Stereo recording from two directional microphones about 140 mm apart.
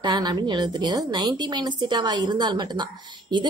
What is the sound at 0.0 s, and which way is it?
A woman's voice, 30° right (ahead or behind).